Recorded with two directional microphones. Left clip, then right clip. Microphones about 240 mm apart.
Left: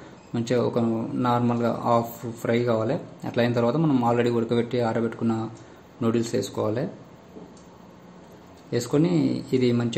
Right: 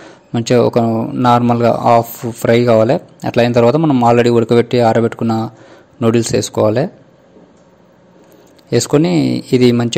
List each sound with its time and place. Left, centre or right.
0.0 s a man's voice: right
8.6 s a man's voice: right